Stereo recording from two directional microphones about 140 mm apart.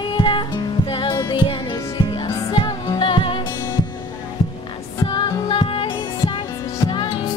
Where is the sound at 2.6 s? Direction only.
35° left (ahead or behind).